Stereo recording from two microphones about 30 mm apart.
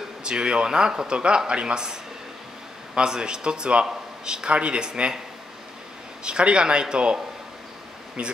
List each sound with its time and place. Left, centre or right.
0.2 s speech: right
6.2 s speech: right
8.2 s speech: right